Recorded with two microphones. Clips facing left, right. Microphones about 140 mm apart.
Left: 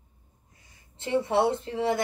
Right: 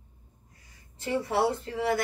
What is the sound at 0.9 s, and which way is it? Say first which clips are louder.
A woman's voice: left 3 dB; 25° left (ahead or behind).